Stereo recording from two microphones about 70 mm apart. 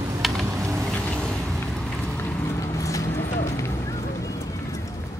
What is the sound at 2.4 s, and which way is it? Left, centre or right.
Vehicle, left.